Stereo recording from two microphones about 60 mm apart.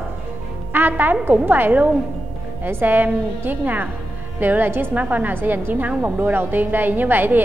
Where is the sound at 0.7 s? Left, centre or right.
Right.